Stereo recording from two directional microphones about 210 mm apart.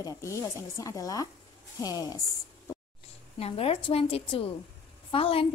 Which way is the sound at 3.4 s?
25° left (ahead or behind).